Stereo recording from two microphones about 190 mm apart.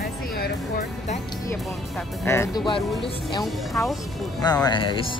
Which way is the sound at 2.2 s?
15° left (ahead or behind).